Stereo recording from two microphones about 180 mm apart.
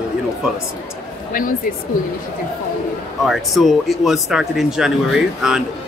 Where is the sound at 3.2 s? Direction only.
Centre (ahead or behind).